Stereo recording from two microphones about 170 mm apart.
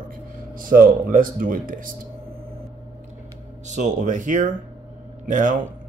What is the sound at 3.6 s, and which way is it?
Speech, 45° right (ahead or behind).